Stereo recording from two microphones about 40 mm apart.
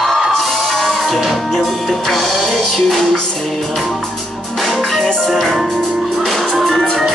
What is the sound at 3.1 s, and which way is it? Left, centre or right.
Music, centre.